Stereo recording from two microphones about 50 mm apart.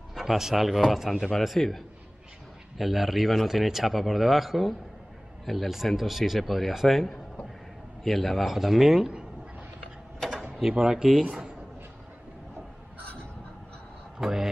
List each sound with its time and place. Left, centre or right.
0.1 s a man's voice: centre
10.7 s speech: centre
13.0 s fowl: left
14.1 s speech: centre